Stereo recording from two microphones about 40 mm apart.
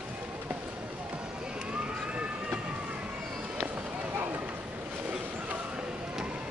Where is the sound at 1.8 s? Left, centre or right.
Right.